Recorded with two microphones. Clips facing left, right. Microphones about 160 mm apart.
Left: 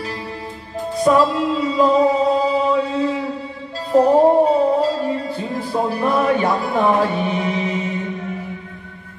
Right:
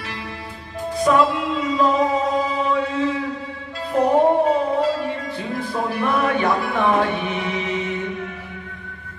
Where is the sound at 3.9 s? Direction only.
30° left (ahead or behind).